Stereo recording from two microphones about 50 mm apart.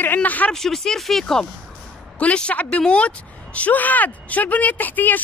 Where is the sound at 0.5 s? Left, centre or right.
Centre.